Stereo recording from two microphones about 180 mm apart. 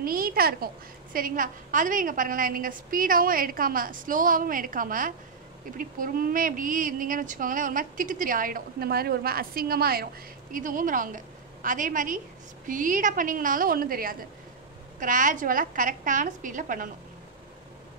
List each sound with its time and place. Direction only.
0.0 s a child's voice: 55° right (ahead or behind)